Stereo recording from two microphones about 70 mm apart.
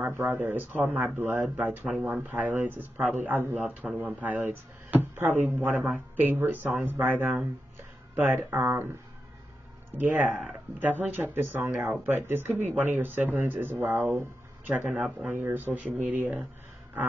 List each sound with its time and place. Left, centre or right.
0.1 s speech: right
1.9 s speech: centre; by 8.7 s right
9.9 s speech: right
11.7 s speech: centre
12.0 s speech: right
14.9 s speech: centre